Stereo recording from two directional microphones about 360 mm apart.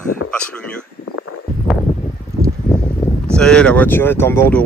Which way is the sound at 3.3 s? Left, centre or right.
Centre.